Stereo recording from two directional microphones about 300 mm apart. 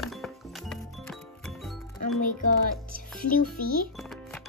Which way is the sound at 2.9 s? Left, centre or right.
Left.